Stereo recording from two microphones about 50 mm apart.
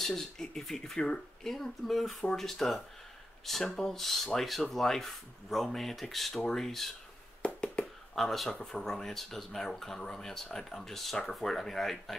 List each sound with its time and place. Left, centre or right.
0.0 s speech: centre
7.4 s a sound: left
8.1 s speech: centre